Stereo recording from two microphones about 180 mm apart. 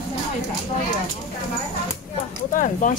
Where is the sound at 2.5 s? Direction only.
50° left (ahead or behind).